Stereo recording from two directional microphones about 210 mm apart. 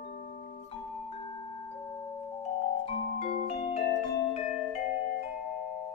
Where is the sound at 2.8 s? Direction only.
30° left (ahead or behind).